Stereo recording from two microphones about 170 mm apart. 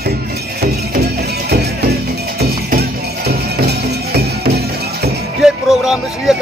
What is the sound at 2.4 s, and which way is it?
Music, 65° right (ahead or behind).